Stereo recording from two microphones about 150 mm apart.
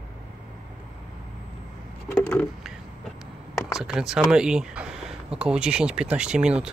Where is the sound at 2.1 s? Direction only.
10° left (ahead or behind).